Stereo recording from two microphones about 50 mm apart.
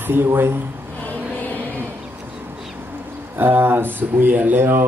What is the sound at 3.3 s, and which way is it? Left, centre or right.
Speech, right.